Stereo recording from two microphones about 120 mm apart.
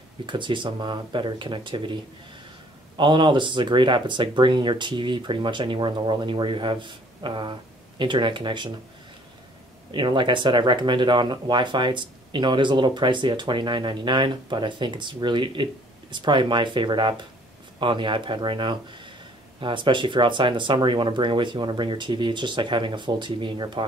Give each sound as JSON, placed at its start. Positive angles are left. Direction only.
{"t": 0.3, "sound": "speech", "side_deg": -40}
{"t": 3.0, "sound": "speech", "side_deg": -40}
{"t": 9.8, "sound": "speech", "side_deg": -40}